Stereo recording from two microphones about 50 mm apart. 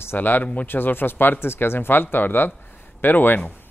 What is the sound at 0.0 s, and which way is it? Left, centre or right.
Speech, left.